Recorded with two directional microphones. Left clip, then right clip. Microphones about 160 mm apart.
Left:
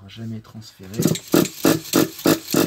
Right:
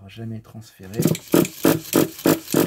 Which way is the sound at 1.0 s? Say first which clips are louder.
Even; 25° right (ahead or behind).